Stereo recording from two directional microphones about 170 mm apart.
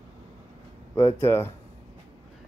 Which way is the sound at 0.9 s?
15° left (ahead or behind).